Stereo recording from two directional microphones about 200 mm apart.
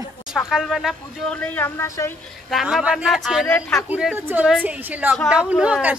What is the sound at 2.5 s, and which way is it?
Speech, centre (ahead or behind).